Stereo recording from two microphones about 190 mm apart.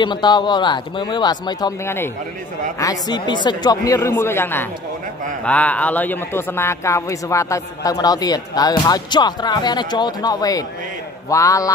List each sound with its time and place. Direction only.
0.0 s a man's voice: 25° left (ahead or behind)